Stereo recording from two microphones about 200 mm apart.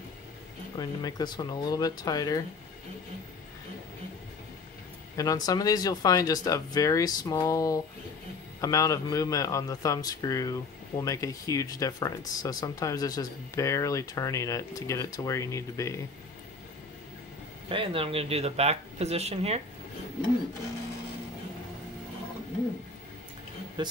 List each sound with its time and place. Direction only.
0.7 s speech: 20° left (ahead or behind)
5.1 s a man's voice: 20° left (ahead or behind)
17.6 s speech: 25° right (ahead or behind)
23.8 s speech: 25° right (ahead or behind)